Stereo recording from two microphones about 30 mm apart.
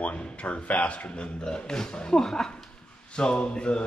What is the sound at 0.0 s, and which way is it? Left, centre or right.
A man's voice, left.